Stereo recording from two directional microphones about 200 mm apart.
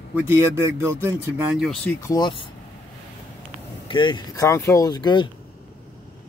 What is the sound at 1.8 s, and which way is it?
Speech, 15° left (ahead or behind).